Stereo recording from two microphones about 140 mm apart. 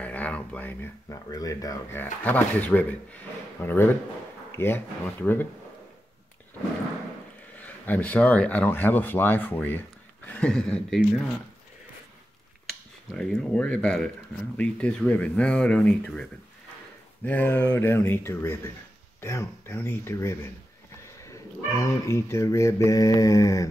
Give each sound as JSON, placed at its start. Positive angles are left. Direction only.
{"t": 0.0, "sound": "a sound", "side_deg": 10}
{"t": 1.0, "sound": "speech", "side_deg": 25}
{"t": 7.6, "sound": "speech", "side_deg": 10}
{"t": 12.6, "sound": "speech", "side_deg": 5}